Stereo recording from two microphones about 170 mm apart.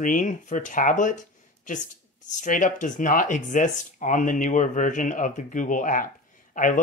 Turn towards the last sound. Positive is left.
turn(degrees=50)  # may be behind; listen again after turning